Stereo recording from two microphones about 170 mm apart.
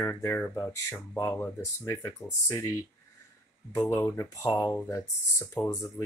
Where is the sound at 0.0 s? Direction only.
10° left (ahead or behind).